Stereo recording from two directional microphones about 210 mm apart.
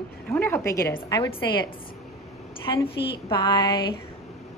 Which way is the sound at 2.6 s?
25° left (ahead or behind).